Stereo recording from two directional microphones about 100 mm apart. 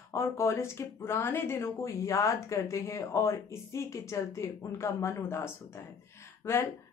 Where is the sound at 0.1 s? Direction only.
30° left (ahead or behind).